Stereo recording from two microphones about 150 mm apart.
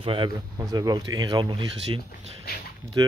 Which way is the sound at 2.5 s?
90° left.